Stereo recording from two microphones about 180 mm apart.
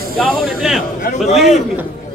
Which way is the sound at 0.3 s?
Centre (ahead or behind).